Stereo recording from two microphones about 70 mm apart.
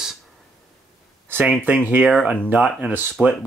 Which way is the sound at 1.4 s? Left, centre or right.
Right.